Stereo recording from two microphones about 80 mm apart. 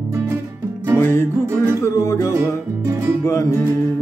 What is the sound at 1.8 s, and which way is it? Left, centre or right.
Music, left.